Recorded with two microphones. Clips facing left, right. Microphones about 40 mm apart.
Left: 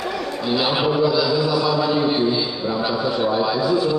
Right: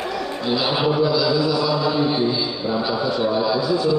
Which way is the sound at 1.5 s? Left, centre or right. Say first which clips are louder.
Left 1 dB; centre.